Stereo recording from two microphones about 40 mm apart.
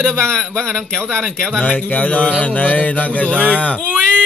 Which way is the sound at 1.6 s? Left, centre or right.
Left.